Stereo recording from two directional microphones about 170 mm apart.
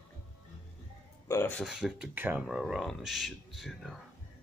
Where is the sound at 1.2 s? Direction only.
15° left (ahead or behind).